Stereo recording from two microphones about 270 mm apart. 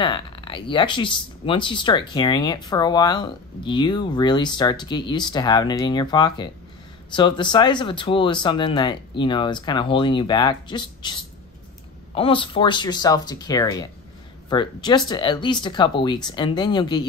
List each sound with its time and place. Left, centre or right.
0.0 s speech: centre